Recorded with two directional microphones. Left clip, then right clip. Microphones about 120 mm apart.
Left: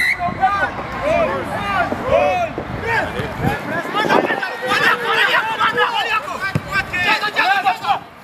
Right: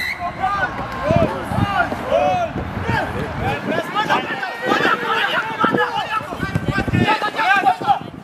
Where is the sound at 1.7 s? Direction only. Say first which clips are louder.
Left 2 dB; 5° left (ahead or behind).